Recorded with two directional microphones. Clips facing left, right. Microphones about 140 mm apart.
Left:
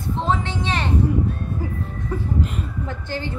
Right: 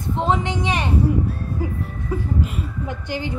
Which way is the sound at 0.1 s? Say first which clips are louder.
Right 2 dB; 15° right (ahead or behind).